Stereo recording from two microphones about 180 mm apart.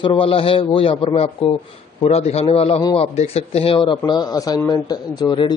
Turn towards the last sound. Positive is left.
turn(degrees=25)  # may be behind; listen again after turning